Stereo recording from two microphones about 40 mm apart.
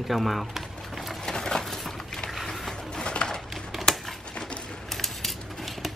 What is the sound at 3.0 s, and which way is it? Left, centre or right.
Pigeon, left.